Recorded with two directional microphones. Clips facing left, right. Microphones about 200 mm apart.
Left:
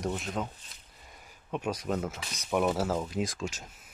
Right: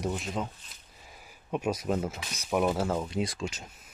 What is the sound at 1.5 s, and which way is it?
Speech, 10° right (ahead or behind).